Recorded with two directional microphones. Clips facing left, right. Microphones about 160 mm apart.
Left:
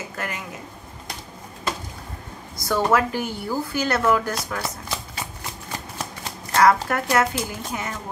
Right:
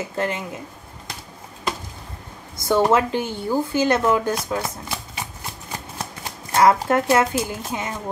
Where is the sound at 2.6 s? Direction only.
25° right (ahead or behind).